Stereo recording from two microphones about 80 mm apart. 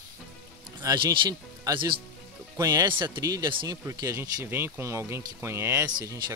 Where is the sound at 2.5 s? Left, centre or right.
Right.